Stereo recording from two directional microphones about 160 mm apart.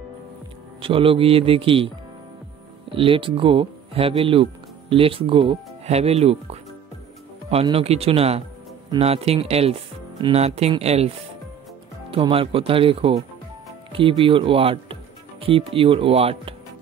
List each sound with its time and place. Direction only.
0.7 s speech: 35° right (ahead or behind)
2.9 s speech: 35° right (ahead or behind)
7.7 s speech: 40° right (ahead or behind)
12.1 s speech: 35° right (ahead or behind)